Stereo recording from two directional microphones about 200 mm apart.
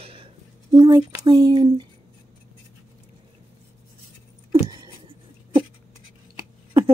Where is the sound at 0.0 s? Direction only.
25° right (ahead or behind).